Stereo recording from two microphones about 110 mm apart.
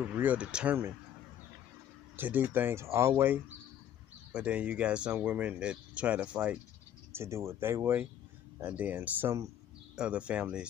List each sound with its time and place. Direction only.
0.0 s speech: 15° right (ahead or behind)
2.1 s speech: 15° right (ahead or behind)
4.3 s speech: 10° right (ahead or behind)
7.1 s speech: 25° right (ahead or behind)